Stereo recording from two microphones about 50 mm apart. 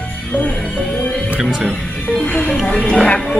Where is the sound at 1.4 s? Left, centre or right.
Centre.